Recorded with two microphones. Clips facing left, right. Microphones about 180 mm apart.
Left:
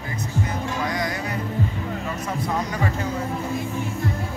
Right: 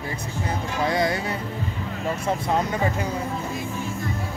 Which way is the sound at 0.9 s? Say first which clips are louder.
Right 4 dB; 25° right (ahead or behind).